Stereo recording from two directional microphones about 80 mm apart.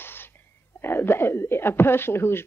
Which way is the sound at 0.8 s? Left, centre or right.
Left.